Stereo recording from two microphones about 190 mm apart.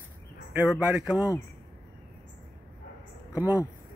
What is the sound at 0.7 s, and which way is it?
Speech, 5° right (ahead or behind).